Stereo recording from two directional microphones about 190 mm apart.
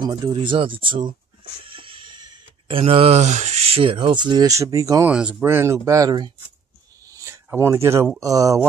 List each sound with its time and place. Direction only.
0.0 s speech: 20° right (ahead or behind)
7.1 s a sound: 15° right (ahead or behind)
8.2 s speech: 20° right (ahead or behind)